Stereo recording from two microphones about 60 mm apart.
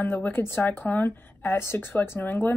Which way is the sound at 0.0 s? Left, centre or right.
Left.